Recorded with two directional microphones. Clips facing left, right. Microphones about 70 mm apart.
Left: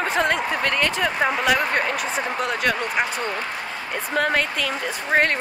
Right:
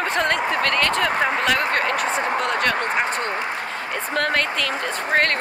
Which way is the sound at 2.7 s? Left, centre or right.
Right.